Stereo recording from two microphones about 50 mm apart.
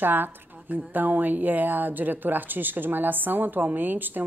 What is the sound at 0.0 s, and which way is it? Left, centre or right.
Speech, right.